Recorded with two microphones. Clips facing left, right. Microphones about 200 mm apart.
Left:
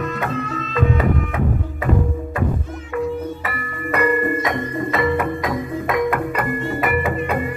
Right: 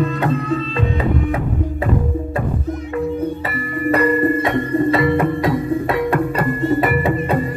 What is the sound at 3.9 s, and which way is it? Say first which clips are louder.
Music: right 3 dB; 30° right (ahead or behind).